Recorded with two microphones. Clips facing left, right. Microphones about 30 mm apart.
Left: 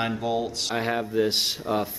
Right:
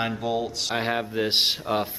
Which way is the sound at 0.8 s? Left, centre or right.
Right.